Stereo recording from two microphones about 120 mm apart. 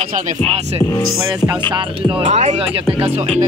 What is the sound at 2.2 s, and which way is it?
Speech, 70° right (ahead or behind).